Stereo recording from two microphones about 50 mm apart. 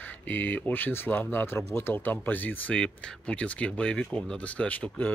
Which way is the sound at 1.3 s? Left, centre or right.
Left.